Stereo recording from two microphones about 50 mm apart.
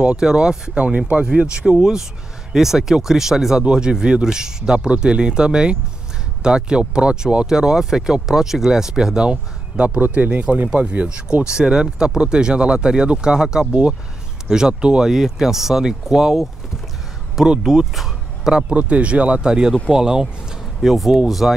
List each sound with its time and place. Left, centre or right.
0.0 s speech: right
0.9 s speech: right; by 18.5 s centre
18.7 s speech: right; by 21.5 s centre